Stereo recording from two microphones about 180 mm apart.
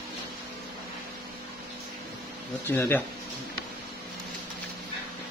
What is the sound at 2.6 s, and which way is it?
Speech, 10° left (ahead or behind).